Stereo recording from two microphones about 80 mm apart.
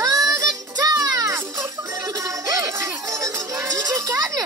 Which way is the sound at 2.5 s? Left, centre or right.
Right.